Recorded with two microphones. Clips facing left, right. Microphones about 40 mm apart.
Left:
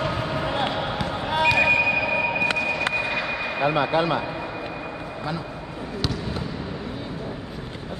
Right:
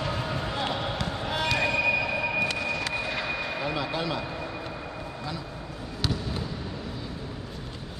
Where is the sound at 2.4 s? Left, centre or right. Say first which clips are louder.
Left 6 dB; left.